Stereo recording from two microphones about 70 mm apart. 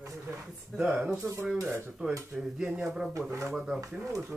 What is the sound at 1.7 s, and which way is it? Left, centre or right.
Dishes, right.